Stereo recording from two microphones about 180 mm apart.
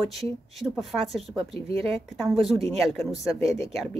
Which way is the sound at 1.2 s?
30° right (ahead or behind).